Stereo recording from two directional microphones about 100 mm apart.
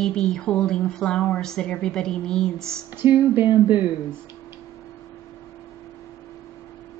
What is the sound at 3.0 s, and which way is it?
Speech, 20° right (ahead or behind).